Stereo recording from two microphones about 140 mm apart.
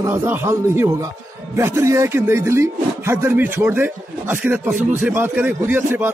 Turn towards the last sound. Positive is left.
turn(degrees=-15)  # may be behind; listen again after turning